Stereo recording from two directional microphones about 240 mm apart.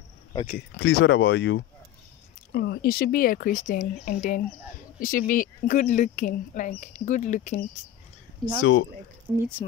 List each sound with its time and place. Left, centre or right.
0.5 s speech: left
8.5 s speech: left
9.6 s speech: centre